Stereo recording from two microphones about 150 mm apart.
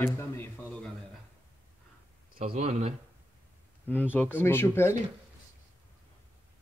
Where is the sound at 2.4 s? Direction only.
45° right (ahead or behind).